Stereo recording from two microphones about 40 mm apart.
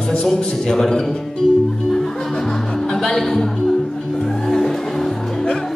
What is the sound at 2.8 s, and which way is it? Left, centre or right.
Music, centre.